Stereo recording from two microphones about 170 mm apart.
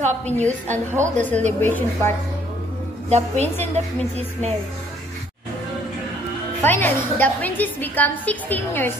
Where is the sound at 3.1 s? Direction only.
40° right (ahead or behind).